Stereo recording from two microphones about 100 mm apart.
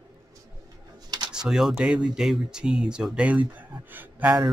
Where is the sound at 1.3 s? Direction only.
5° right (ahead or behind).